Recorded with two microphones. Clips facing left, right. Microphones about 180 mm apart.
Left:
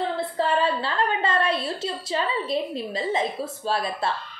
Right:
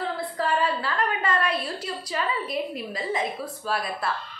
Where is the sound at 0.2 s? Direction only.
25° left (ahead or behind).